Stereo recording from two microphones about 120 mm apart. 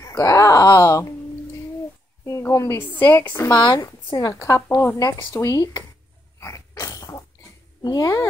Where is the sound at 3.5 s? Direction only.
40° left (ahead or behind).